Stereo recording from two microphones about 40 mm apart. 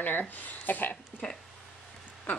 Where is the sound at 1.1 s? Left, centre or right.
Left.